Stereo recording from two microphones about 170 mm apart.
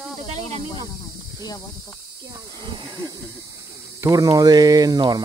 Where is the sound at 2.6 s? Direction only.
25° right (ahead or behind).